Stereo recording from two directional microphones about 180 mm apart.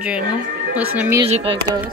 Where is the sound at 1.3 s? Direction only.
35° right (ahead or behind).